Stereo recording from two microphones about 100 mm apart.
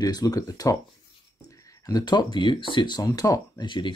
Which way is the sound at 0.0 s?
40° left (ahead or behind).